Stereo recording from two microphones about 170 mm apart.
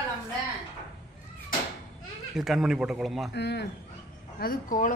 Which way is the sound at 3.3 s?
80° left.